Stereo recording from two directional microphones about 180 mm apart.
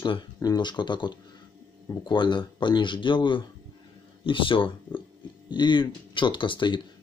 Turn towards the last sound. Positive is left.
turn(degrees=25)  # may be behind; listen again after turning